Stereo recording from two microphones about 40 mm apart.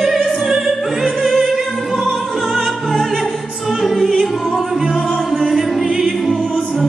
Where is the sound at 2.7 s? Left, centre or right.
Centre.